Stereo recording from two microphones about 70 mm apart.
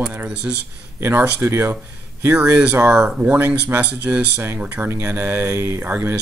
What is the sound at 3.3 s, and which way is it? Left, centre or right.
Speech, right.